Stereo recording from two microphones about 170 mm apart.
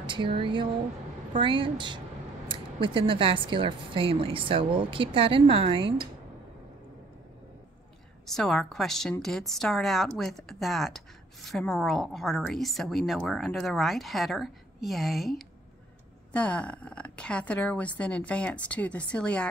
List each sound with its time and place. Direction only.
0.0 s a woman's voice: 30° right (ahead or behind)
8.3 s a woman's voice: 5° left (ahead or behind)